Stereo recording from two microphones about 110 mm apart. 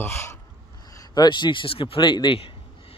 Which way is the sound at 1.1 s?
40° left (ahead or behind).